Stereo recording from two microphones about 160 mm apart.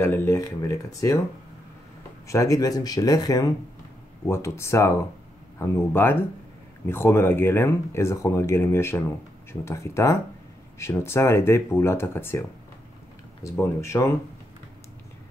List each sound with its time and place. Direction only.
0.0 s speech: 15° left (ahead or behind)
2.2 s speech: 20° left (ahead or behind)